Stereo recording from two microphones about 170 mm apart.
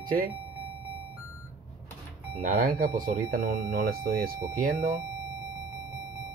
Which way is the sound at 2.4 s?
55° right (ahead or behind).